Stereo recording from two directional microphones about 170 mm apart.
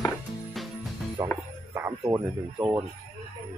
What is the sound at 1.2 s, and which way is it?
Music, 20° right (ahead or behind).